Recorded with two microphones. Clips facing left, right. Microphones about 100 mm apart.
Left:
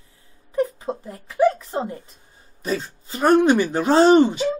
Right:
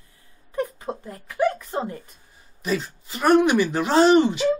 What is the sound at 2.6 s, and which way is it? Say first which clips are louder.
Speech: even; 35° left (ahead or behind).